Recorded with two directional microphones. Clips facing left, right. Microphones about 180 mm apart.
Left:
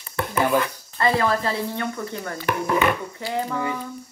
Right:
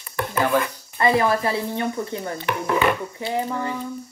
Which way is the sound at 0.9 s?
15° right (ahead or behind).